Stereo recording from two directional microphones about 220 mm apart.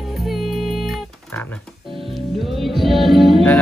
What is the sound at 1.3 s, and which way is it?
Music, 10° left (ahead or behind).